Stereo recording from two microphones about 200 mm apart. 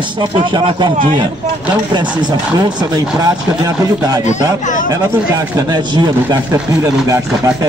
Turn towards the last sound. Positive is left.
turn(degrees=-15)  # may be behind; listen again after turning